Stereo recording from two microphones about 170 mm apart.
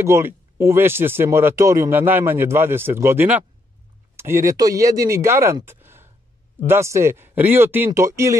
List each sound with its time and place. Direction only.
0.0 s speech: 15° right (ahead or behind)